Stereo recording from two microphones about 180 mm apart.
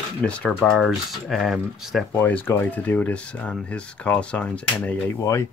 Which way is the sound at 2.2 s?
10° left (ahead or behind).